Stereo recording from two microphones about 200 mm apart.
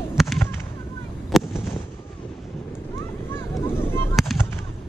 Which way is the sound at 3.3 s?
10° left (ahead or behind).